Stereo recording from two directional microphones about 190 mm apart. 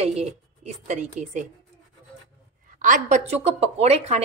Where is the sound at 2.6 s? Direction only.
45° right (ahead or behind).